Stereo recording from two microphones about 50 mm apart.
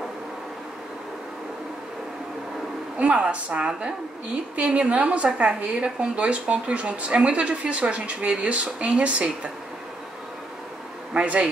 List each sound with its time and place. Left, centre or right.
3.0 s a woman's voice: right
11.1 s a woman's voice: right